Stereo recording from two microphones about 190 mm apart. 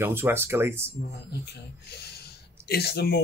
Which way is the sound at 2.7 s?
60° left (ahead or behind).